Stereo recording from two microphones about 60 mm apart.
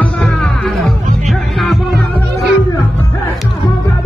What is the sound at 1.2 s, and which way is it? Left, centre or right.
Music, centre.